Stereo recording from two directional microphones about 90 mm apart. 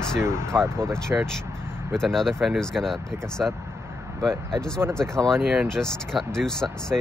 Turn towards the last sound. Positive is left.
turn(degrees=5)  # may be behind; listen again after turning